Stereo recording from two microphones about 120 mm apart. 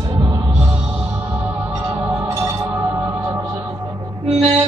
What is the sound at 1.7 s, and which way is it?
Music, 30° right (ahead or behind).